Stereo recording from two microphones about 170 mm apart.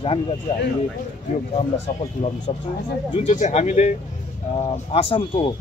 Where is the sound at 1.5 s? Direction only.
35° left (ahead or behind).